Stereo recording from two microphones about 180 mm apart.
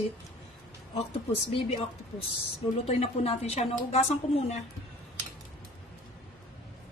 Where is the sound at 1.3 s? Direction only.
35° left (ahead or behind).